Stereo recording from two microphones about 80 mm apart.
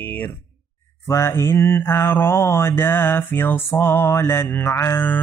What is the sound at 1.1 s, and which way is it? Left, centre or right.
Mantra, left.